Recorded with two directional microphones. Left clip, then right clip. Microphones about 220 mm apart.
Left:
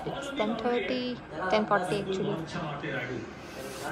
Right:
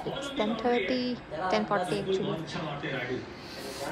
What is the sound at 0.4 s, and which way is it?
Speech, 15° right (ahead or behind).